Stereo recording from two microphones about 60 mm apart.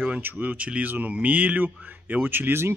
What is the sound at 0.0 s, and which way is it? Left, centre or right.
A man's voice, right.